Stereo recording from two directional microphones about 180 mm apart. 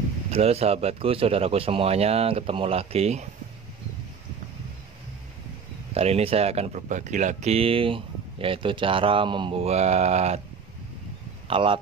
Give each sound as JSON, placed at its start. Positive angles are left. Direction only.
{"t": 0.3, "sound": "speech", "side_deg": -35}
{"t": 5.9, "sound": "speech", "side_deg": -35}
{"t": 11.4, "sound": "speech", "side_deg": -30}